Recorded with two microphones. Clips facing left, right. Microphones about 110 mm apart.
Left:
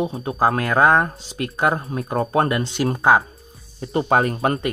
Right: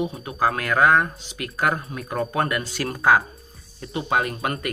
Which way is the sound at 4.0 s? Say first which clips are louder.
Left 5 dB; 40° left (ahead or behind).